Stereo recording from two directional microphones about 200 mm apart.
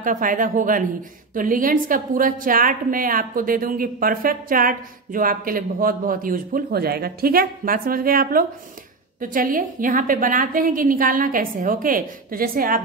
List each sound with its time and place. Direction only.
0.0 s a woman's voice: 40° right (ahead or behind)